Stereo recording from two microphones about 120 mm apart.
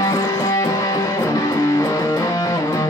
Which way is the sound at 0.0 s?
25° left (ahead or behind).